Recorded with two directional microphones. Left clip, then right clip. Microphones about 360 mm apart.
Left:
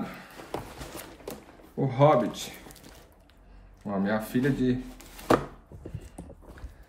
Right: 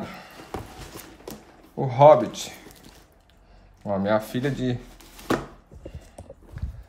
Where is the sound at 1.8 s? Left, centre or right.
Right.